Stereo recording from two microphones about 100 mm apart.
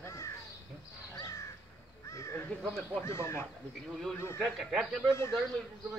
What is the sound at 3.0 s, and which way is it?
Crow, 25° left (ahead or behind).